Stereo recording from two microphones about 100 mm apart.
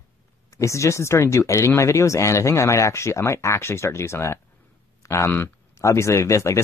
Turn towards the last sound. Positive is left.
turn(degrees=30)  # may be behind; listen again after turning